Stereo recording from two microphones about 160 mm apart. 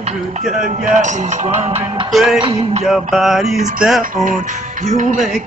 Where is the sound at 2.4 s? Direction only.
35° right (ahead or behind).